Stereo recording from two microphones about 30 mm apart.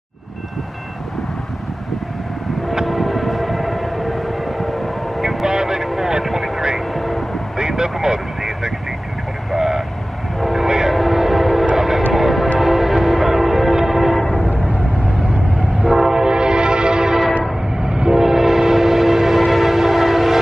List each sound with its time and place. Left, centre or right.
2.9 s vehicle: centre
5.5 s vehicle: centre
6.2 s vehicle: centre
7.5 s vehicle: right
10.4 s train horn: centre
10.9 s train: centre
12.5 s change ringing: centre
15.9 s train horn: centre
17.8 s train: right
18.2 s train: centre